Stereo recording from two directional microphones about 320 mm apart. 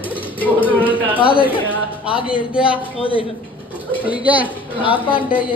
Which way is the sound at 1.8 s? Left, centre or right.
Centre.